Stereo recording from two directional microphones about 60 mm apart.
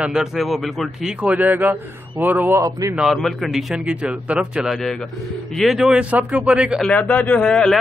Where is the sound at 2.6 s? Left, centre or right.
Right.